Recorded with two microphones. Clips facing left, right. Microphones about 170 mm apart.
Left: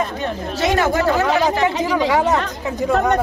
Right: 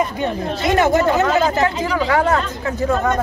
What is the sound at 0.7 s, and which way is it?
Speech, 20° right (ahead or behind).